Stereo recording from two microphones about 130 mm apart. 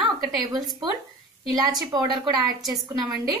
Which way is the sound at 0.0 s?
30° right (ahead or behind).